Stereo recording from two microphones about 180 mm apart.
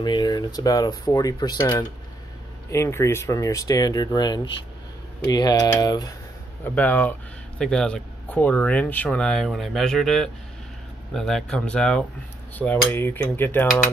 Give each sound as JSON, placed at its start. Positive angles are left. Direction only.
{"t": 0.0, "sound": "speech", "side_deg": 25}
{"t": 2.7, "sound": "speech", "side_deg": 15}
{"t": 6.6, "sound": "speech", "side_deg": 10}